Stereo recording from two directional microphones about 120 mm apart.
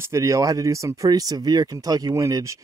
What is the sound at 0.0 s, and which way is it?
Speech, 25° right (ahead or behind).